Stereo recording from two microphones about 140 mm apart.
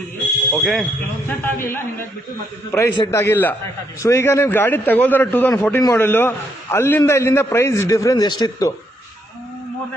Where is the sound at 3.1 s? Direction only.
20° left (ahead or behind).